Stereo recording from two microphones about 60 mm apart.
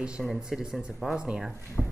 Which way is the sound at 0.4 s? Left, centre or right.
Centre.